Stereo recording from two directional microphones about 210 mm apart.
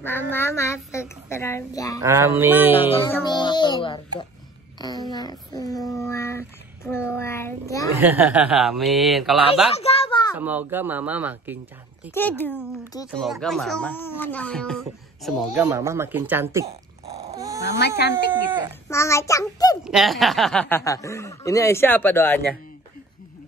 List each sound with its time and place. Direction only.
0.0 s speech: 10° left (ahead or behind)
2.0 s speech: 15° right (ahead or behind)
3.3 s music: 20° left (ahead or behind)
4.7 s speech: 20° left (ahead or behind)
8.0 s speech: 10° right (ahead or behind)
9.8 s a sound: 30° left (ahead or behind)
10.3 s speech: 10° right (ahead or behind)
12.1 s speech: 10° left (ahead or behind)
13.0 s speech: centre (ahead or behind)
17.3 s dog: 15° right (ahead or behind)
17.6 s speech: 55° left (ahead or behind)
18.9 s speech: 15° left (ahead or behind)
19.8 s speech: centre (ahead or behind)